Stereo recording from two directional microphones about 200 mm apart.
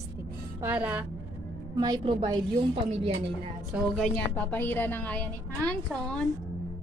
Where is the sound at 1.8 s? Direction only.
20° right (ahead or behind).